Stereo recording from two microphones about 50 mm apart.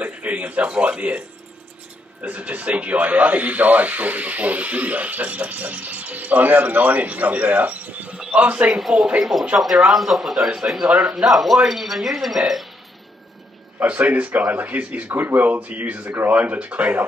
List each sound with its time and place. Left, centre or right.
0.0 s a man's voice: right
2.2 s speech: right
8.7 s speech: centre
13.7 s speech: right